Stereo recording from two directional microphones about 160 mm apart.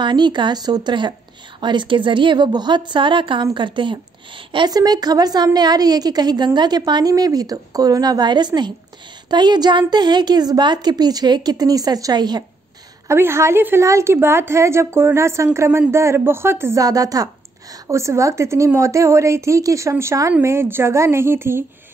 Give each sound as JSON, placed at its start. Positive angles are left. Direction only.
{"t": 0.0, "sound": "a woman's voice", "side_deg": -30}
{"t": 13.1, "sound": "a woman's voice", "side_deg": -15}